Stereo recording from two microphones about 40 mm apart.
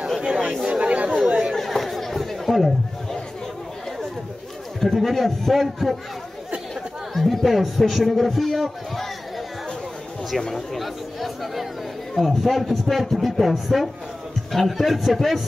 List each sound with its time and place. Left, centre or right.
0.2 s chatter: right
0.7 s chatter: right
1.5 s chatter: centre
4.7 s speech: centre
7.2 s speech: centre
10.5 s speech: centre